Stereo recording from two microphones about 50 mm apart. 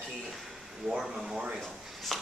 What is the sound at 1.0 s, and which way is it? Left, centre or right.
Speech, centre.